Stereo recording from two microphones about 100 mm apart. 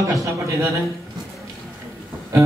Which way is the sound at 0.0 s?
35° right (ahead or behind).